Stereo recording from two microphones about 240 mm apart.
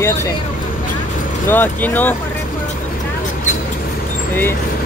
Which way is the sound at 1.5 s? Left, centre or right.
Centre.